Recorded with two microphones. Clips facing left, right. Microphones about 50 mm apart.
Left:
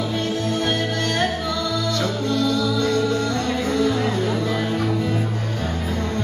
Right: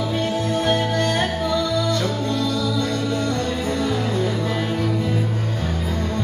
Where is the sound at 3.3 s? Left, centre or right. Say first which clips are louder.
Left 1 dB; left.